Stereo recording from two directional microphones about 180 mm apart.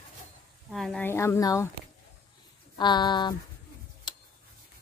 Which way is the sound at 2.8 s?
25° left (ahead or behind).